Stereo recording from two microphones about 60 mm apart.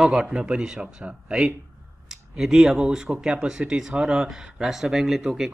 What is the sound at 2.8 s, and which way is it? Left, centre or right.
Speech, centre.